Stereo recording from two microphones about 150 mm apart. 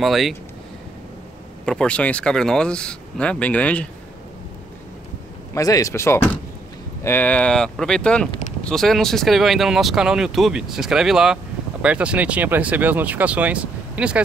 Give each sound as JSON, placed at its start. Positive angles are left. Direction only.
{"t": 0.0, "sound": "speech", "side_deg": 0}
{"t": 1.7, "sound": "speech", "side_deg": 5}
{"t": 5.5, "sound": "speech", "side_deg": 25}